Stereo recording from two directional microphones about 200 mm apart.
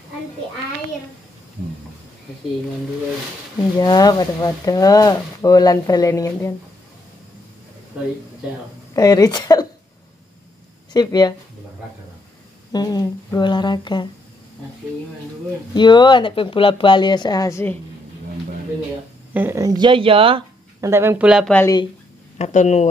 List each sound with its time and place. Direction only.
3.7 s speech: 20° left (ahead or behind)
8.9 s speech: 20° left (ahead or behind)
10.9 s speech: 20° left (ahead or behind)
12.7 s speech: 20° left (ahead or behind)
15.7 s speech: 20° left (ahead or behind)
19.3 s speech: 10° right (ahead or behind)
20.9 s speech: 10° right (ahead or behind)
21.5 s speech: 15° left (ahead or behind)
22.4 s speech: 35° left (ahead or behind)